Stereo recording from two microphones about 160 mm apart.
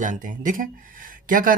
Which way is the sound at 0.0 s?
55° right (ahead or behind).